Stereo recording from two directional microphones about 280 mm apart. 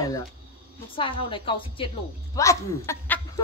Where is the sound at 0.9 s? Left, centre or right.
Centre.